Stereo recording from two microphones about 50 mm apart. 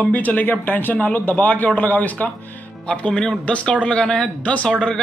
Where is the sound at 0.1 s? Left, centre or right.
Left.